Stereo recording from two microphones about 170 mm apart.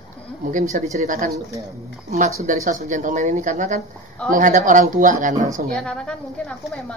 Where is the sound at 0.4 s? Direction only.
50° right (ahead or behind).